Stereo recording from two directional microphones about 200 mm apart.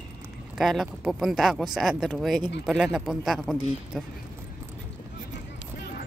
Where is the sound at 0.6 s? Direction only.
Centre (ahead or behind).